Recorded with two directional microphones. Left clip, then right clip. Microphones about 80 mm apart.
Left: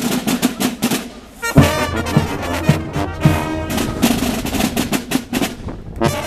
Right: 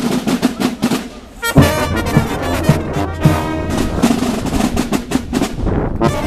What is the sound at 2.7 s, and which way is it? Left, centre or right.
Music, left.